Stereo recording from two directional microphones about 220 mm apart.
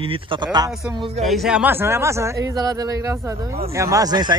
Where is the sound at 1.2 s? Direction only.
Centre (ahead or behind).